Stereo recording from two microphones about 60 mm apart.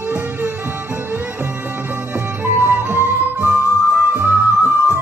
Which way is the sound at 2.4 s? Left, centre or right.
Right.